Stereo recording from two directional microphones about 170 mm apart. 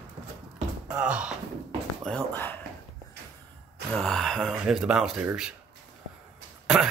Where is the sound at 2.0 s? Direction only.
5° left (ahead or behind).